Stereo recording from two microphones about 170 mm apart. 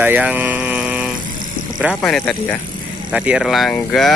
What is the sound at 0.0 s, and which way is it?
Vehicle, 10° right (ahead or behind).